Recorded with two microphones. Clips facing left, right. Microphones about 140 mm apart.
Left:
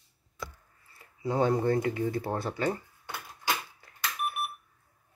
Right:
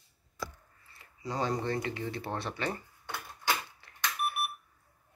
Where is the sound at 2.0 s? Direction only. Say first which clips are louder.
Left 5 dB; 40° left (ahead or behind).